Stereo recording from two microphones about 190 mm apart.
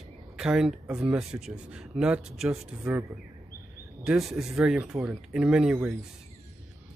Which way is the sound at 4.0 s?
5° right (ahead or behind).